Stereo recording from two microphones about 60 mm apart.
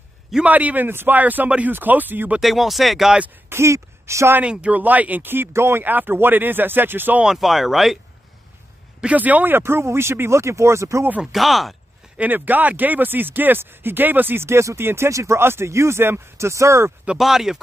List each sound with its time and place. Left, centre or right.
0.5 s speech: right
2.4 s speech: centre
3.4 s speech: right
4.4 s speech: right
5.9 s speech: right
7.2 s speech: centre
9.0 s speech: right
11.3 s speech: centre
12.2 s speech: right
17.2 s speech: centre